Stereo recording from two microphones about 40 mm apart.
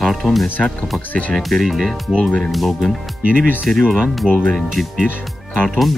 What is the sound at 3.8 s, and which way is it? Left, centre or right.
Speech, centre.